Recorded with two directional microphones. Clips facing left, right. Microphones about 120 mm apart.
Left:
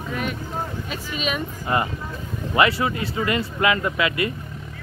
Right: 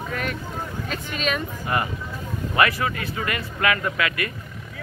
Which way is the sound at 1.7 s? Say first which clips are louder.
Left 2 dB; 25° left (ahead or behind).